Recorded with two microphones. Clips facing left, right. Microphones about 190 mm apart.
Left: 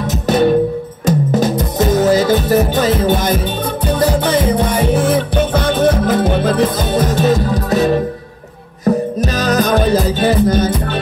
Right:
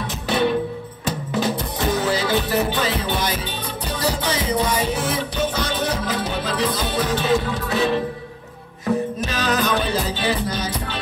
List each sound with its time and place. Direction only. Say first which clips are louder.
0.0 s music: left 8 dB; 45° left (ahead or behind)